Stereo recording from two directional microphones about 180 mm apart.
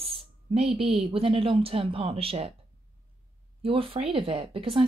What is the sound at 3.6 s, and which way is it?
A woman's voice, 30° right (ahead or behind).